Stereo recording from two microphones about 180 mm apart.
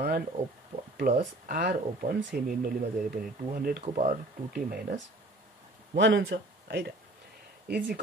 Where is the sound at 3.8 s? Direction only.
40° right (ahead or behind).